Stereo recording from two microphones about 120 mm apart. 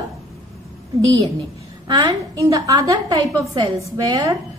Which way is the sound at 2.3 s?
30° right (ahead or behind).